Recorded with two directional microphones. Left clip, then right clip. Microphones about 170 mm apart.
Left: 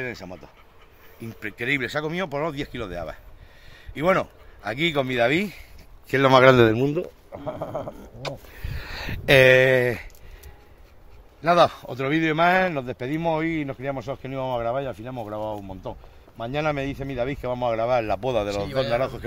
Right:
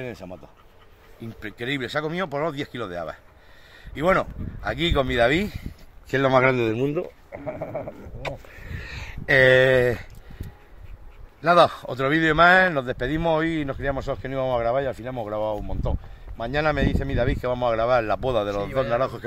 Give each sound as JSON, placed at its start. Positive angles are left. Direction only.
{"t": 0.1, "sound": "speech", "side_deg": -25}
{"t": 1.2, "sound": "speech", "side_deg": 0}
{"t": 6.4, "sound": "a man's voice", "side_deg": 65}
{"t": 6.9, "sound": "speech", "side_deg": 20}
{"t": 7.4, "sound": "speech", "side_deg": 10}
{"t": 8.9, "sound": "a sound", "side_deg": 60}
{"t": 9.6, "sound": "speech", "side_deg": 0}
{"t": 11.4, "sound": "a man's voice", "side_deg": -10}